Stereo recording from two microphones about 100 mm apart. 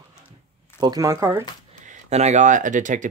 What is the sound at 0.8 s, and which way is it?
Speech, 40° right (ahead or behind).